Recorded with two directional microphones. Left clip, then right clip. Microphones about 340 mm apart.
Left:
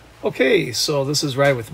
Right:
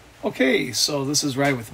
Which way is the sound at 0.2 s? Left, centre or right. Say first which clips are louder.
Left 4 dB; centre.